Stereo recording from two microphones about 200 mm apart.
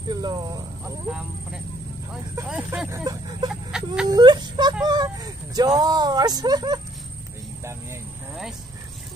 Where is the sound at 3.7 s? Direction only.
5° right (ahead or behind).